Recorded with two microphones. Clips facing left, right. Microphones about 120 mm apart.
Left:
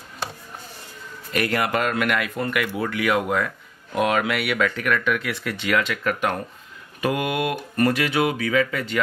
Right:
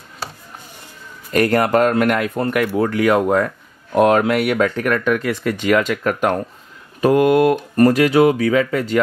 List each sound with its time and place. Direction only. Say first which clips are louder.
1.3 s speech: right 8 dB; 40° right (ahead or behind)